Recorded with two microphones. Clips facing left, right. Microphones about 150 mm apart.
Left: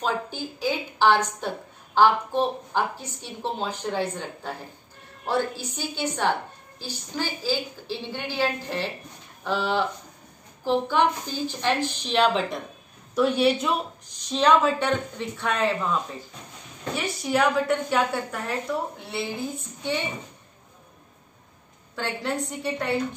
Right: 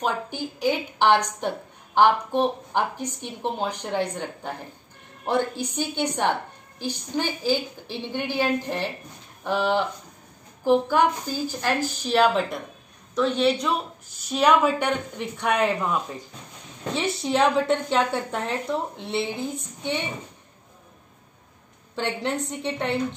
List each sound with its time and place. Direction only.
0.0 s a woman's voice: 15° right (ahead or behind)
13.1 s a woman's voice: 10° left (ahead or behind); by 16.0 s 15° right (ahead or behind)
16.9 s a woman's voice: 25° right (ahead or behind)
21.9 s a woman's voice: 20° right (ahead or behind)